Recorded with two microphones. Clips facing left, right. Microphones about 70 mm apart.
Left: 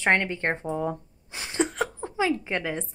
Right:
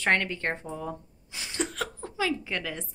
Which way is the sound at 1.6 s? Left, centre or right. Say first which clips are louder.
Left 6 dB; left.